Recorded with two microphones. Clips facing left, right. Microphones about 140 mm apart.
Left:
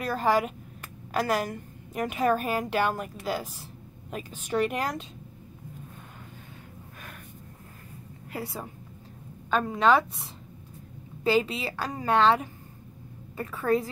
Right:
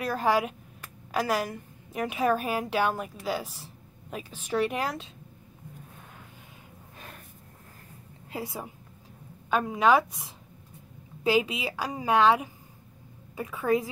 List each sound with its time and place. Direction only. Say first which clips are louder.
0.0 s a woman's voice: left 1 dB; 5° right (ahead or behind)
8.3 s a woman's voice: even; 20° right (ahead or behind)
9.5 s a woman's voice: even; 5° right (ahead or behind)